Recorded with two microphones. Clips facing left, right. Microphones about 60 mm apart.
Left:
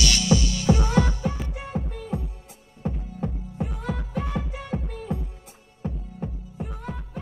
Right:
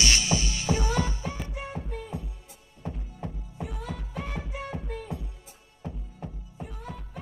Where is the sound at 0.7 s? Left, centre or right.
Left.